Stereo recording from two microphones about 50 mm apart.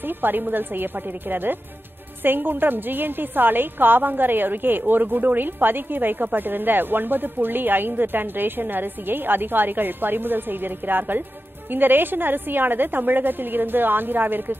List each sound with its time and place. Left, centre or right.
0.2 s a woman's voice: right